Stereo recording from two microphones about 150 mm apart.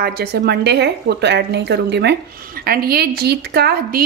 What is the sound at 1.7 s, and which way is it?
A woman's voice, 90° right.